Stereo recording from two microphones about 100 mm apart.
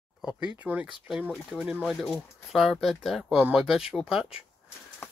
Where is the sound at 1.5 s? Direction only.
5° right (ahead or behind).